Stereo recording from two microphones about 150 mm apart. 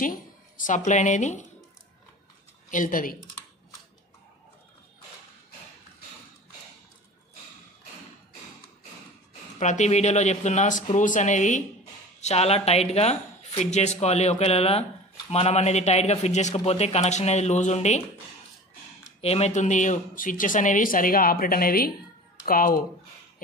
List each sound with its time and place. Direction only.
0.7 s speech: 55° left (ahead or behind)
2.7 s speech: 60° left (ahead or behind)
9.6 s speech: 50° left (ahead or behind)
19.2 s speech: 45° left (ahead or behind); by 22.8 s 75° left (ahead or behind)